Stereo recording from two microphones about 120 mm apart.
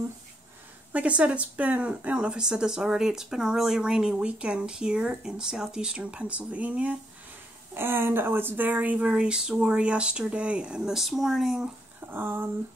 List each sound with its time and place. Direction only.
0.9 s speech: 10° right (ahead or behind)
12.1 s speech: 20° right (ahead or behind)